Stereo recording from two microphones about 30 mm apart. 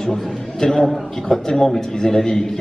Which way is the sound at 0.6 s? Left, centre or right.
Centre.